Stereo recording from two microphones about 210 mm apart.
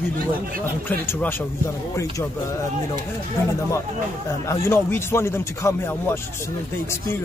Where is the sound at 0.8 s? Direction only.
10° left (ahead or behind).